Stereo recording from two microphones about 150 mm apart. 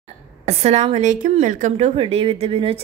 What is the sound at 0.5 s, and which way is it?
A woman's voice, 45° right (ahead or behind).